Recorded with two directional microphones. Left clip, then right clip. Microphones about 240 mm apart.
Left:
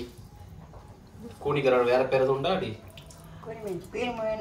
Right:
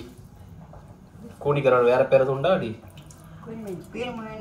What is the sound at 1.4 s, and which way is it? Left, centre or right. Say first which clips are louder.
A man's voice: right 4 dB; centre.